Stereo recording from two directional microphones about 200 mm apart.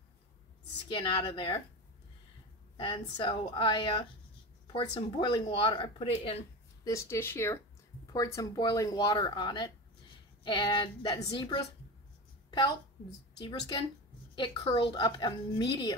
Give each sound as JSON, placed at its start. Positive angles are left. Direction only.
{"t": 0.8, "sound": "a woman's voice", "side_deg": 25}
{"t": 2.8, "sound": "a woman's voice", "side_deg": 25}
{"t": 12.4, "sound": "a sound", "side_deg": 20}
{"t": 13.4, "sound": "a woman's voice", "side_deg": 25}